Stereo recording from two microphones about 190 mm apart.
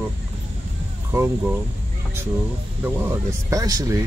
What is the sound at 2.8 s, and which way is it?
Speech, 10° right (ahead or behind).